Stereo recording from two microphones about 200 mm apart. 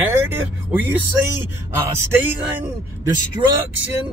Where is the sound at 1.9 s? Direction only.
10° right (ahead or behind).